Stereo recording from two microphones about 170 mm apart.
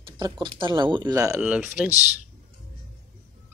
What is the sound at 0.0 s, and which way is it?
Speech, 30° right (ahead or behind).